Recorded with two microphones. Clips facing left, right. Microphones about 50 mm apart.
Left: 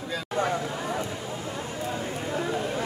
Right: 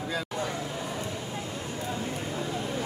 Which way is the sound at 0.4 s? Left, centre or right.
Left.